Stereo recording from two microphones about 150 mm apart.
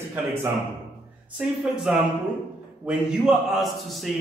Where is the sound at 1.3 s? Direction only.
5° right (ahead or behind).